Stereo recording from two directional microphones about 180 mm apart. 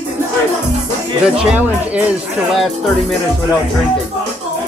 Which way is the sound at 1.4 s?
5° right (ahead or behind).